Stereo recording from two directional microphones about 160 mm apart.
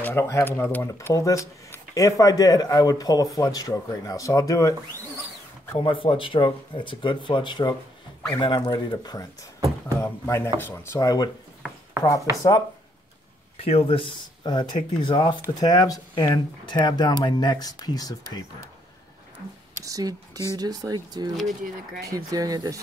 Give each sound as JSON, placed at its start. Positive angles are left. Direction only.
{"t": 0.0, "sound": "speech", "side_deg": 15}
{"t": 5.8, "sound": "speech", "side_deg": 35}
{"t": 13.6, "sound": "speech", "side_deg": 35}
{"t": 19.8, "sound": "speech", "side_deg": -20}
{"t": 21.4, "sound": "speech", "side_deg": 0}
{"t": 22.1, "sound": "speech", "side_deg": -20}